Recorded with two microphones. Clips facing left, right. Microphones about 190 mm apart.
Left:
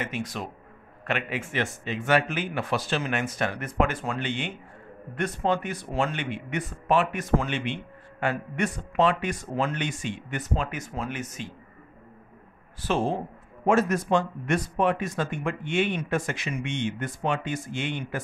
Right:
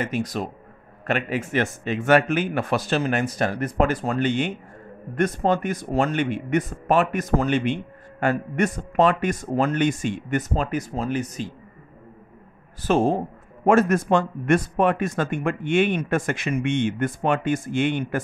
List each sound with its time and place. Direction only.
0.0 s speech: 40° right (ahead or behind)
12.8 s speech: 45° right (ahead or behind)